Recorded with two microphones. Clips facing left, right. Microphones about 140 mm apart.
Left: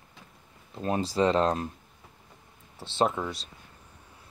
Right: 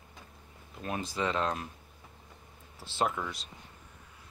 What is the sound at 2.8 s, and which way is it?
Speech, 25° left (ahead or behind).